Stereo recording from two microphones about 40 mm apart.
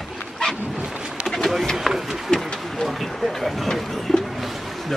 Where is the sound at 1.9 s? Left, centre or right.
Centre.